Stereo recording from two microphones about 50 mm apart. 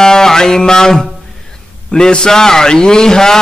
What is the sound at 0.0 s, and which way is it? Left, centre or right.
Music, centre.